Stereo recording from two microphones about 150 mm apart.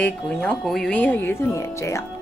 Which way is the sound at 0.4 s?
Centre (ahead or behind).